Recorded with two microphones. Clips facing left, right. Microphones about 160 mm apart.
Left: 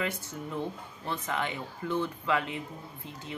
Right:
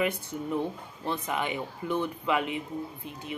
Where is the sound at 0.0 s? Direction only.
15° right (ahead or behind).